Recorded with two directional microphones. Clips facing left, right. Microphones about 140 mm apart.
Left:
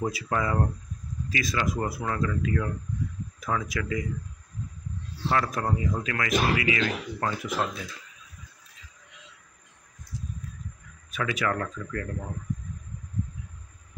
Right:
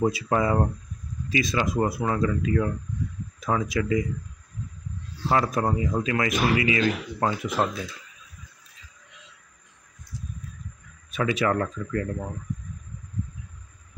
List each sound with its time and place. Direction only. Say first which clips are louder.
0.0 s speech: right 5 dB; 25° right (ahead or behind)
5.3 s speech: right 4 dB; 20° right (ahead or behind)
11.1 s speech: right 4 dB; 25° right (ahead or behind)